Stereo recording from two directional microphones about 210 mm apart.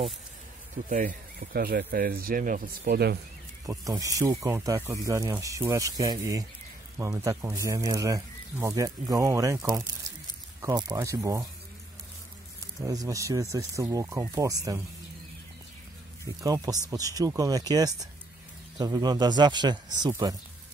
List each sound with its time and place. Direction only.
0.8 s speech: 40° right (ahead or behind)
3.6 s speech: 15° right (ahead or behind)
12.8 s speech: 15° right (ahead or behind)
16.3 s speech: 15° right (ahead or behind)